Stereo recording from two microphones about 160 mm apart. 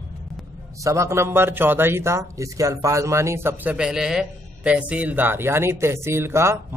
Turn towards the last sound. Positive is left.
turn(degrees=-15)  # may be behind; listen again after turning